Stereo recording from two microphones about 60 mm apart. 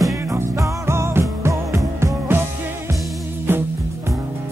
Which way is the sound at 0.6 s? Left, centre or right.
Right.